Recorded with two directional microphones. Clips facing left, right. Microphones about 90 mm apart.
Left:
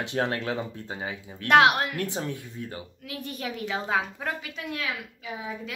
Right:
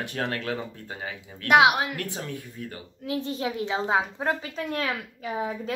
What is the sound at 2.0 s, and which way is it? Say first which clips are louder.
Speech: left 3 dB; 25° left (ahead or behind).